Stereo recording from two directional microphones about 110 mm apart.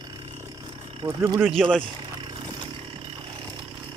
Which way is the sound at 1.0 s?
35° right (ahead or behind).